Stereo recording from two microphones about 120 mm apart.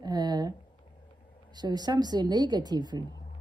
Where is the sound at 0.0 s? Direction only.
35° right (ahead or behind).